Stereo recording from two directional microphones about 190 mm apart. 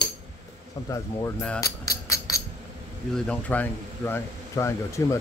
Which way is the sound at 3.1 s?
5° left (ahead or behind).